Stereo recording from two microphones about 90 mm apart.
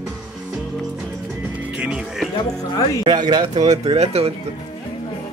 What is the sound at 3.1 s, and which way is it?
Speech, 50° right (ahead or behind).